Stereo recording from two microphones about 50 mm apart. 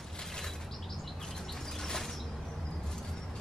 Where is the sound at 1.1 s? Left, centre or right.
Centre.